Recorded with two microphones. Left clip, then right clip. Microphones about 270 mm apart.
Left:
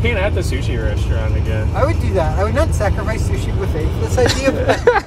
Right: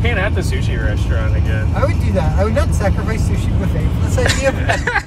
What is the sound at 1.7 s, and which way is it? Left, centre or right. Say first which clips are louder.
Speech: left 2 dB; centre.